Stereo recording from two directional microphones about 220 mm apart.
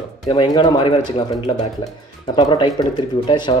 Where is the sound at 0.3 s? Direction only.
25° left (ahead or behind).